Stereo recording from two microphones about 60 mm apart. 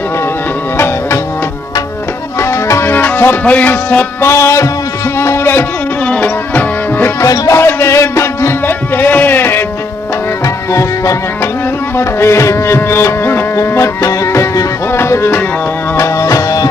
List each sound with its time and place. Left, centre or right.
2.9 s speech: left
4.2 s music: left
5.2 s a sound: left
6.2 s music: left
7.2 s music: left
8.6 s music: left
10.4 s music: left
12.0 s music: left
16.0 s music: left